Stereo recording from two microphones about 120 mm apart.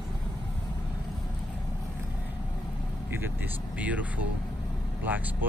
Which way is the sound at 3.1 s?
15° right (ahead or behind).